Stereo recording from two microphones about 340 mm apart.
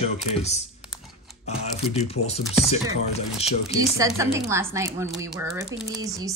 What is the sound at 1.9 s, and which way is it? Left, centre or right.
Speech, centre.